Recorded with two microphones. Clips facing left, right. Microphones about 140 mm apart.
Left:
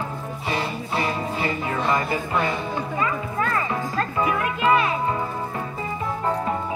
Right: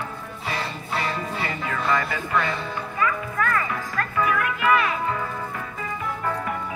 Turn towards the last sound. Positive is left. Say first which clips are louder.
# left 2 dB
turn(degrees=25)  # may be behind; listen again after turning